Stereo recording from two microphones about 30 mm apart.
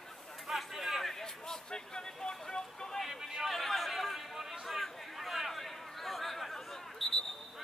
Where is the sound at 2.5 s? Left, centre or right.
Left.